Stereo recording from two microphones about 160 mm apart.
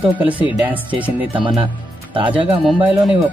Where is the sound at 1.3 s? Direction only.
30° right (ahead or behind).